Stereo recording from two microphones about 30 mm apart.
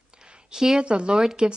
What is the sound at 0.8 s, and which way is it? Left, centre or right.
Speech, right.